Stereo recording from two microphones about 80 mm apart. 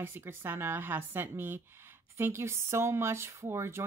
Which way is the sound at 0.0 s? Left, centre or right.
Right.